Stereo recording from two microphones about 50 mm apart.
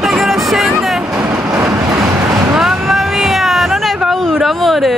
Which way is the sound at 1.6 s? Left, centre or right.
Right.